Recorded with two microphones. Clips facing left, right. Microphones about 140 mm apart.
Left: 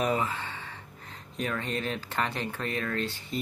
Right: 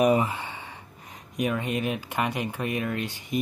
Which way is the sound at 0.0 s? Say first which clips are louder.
Right 6 dB; 15° right (ahead or behind).